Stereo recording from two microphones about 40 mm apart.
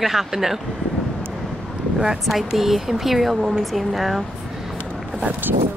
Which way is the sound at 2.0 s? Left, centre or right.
Centre.